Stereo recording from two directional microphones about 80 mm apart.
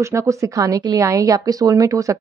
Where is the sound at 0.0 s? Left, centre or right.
Right.